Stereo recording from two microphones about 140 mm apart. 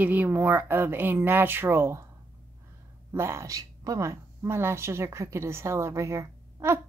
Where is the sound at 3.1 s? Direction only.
20° right (ahead or behind).